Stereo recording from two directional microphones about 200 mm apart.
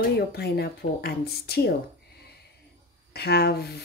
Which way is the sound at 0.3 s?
55° left (ahead or behind).